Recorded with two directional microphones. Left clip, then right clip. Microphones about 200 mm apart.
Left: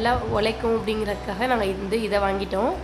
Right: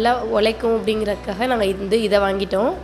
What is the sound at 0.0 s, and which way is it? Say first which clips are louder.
A woman's voice: right 5 dB; 20° right (ahead or behind).